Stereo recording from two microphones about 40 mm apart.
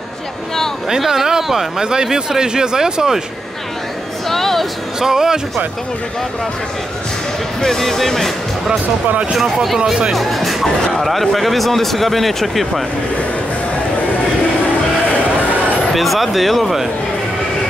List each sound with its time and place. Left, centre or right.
0.8 s speech: centre
4.3 s music: centre
5.0 s speech: centre
7.6 s speech: centre
9.4 s speech: centre
15.9 s speech: centre